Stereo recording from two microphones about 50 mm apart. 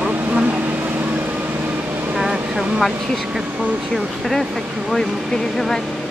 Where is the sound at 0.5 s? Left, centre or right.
Right.